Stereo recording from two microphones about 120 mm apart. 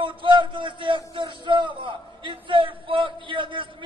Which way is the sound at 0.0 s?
45° right (ahead or behind).